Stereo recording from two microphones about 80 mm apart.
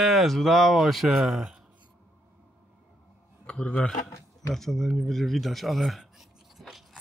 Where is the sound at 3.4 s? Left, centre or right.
Centre.